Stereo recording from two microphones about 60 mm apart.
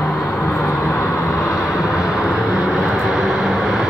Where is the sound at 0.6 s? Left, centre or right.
Left.